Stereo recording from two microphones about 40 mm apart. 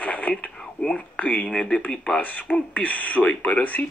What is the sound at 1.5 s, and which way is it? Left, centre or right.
Speech, centre.